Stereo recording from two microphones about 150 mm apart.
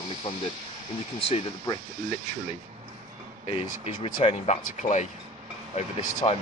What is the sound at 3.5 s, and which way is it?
Speech, 40° left (ahead or behind).